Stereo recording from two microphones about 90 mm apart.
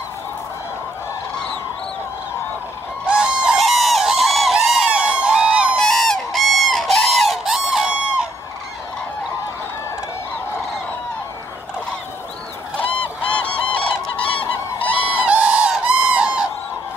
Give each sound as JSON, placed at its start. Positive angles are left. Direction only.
{"t": 3.1, "sound": "a sound", "side_deg": -10}
{"t": 5.8, "sound": "fowl", "side_deg": 5}
{"t": 12.7, "sound": "goose", "side_deg": 15}
{"t": 15.2, "sound": "goose", "side_deg": -15}